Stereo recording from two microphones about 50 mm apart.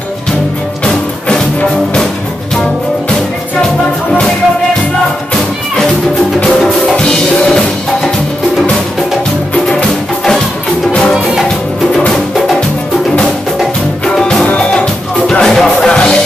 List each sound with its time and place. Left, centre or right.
7.0 s music: centre
9.7 s music: centre
12.1 s music: centre
14.0 s music: centre
15.4 s music: centre